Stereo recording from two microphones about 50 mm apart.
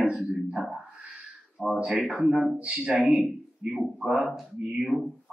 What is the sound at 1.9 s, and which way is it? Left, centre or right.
Speech, centre.